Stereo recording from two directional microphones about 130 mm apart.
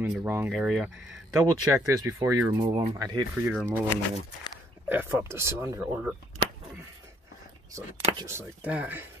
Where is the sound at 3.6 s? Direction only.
15° right (ahead or behind).